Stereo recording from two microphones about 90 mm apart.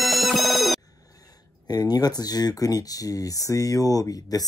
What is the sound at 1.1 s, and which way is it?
Speech, 45° left (ahead or behind).